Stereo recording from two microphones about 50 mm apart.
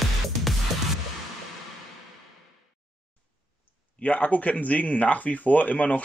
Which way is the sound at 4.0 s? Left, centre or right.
Left.